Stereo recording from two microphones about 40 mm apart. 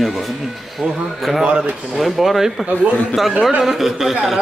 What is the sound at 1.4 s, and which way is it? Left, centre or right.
Speech, right.